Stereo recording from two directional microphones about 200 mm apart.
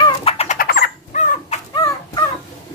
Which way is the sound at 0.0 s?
30° left (ahead or behind).